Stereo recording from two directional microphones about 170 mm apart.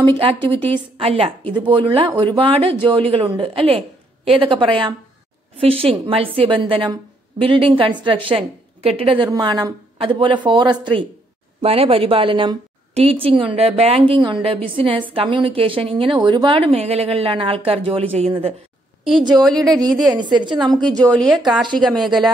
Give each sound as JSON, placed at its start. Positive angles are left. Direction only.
{"t": 0.2, "sound": "a woman's voice", "side_deg": -30}
{"t": 19.3, "sound": "a woman's voice", "side_deg": 0}
{"t": 20.1, "sound": "a woman's voice", "side_deg": -25}
{"t": 20.9, "sound": "a woman's voice", "side_deg": 5}